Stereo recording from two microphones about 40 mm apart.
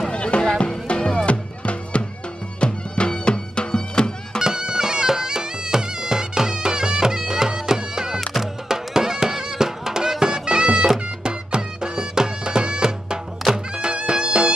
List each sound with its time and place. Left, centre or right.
0.1 s music: left
4.4 s bagpipes: centre
8.6 s music: centre